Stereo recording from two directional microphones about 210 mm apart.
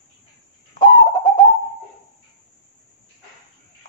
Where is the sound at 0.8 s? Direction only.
20° left (ahead or behind).